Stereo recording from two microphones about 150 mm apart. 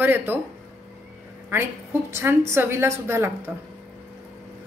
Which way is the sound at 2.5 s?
15° right (ahead or behind).